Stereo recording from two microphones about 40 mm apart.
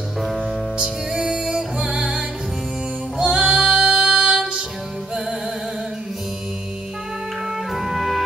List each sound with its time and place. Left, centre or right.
0.2 s music: centre
1.1 s music: centre
7.7 s music: centre